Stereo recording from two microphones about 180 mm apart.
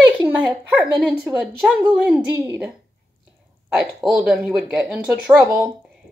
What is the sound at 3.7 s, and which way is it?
A woman's voice, centre (ahead or behind).